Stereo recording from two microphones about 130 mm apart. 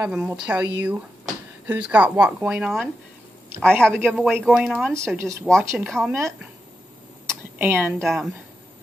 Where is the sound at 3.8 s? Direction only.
5° left (ahead or behind).